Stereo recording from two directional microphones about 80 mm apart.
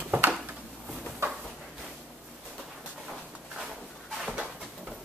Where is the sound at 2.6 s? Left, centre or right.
Centre.